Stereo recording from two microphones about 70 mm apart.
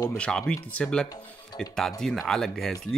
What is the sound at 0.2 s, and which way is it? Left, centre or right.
Speech, centre.